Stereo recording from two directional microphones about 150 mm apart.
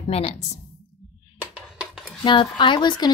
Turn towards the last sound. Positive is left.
turn(degrees=30)  # may be behind; listen again after turning